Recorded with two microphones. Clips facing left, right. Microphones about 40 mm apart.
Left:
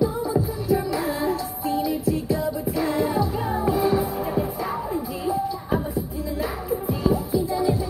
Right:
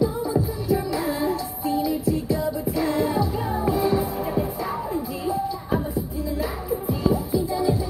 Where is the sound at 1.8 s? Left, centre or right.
Left.